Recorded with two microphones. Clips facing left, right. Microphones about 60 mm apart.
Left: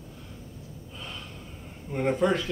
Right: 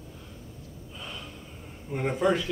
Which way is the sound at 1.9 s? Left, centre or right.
Centre.